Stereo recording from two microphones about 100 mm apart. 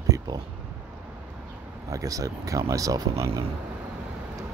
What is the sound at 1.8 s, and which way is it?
Speech, 35° right (ahead or behind).